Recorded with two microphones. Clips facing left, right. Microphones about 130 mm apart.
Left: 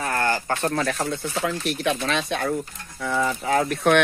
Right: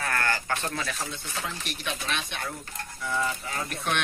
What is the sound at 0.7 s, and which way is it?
Speech, 60° left (ahead or behind).